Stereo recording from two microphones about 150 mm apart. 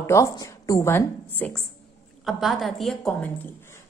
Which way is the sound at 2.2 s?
Centre (ahead or behind).